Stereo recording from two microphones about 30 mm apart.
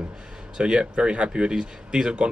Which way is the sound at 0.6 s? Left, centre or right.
Right.